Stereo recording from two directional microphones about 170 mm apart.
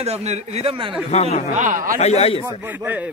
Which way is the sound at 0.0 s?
40° right (ahead or behind).